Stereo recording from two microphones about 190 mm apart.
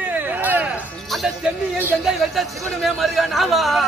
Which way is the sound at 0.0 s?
10° right (ahead or behind).